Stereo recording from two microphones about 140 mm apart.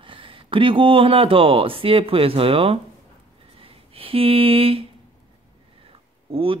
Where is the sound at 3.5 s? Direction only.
40° right (ahead or behind).